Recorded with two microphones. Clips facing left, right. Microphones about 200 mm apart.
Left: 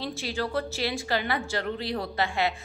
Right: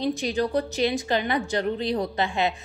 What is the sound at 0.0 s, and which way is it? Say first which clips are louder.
A woman's voice: right 6 dB; 15° right (ahead or behind).